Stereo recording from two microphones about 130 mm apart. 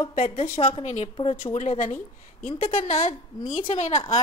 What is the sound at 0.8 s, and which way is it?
A woman's voice, 65° left (ahead or behind).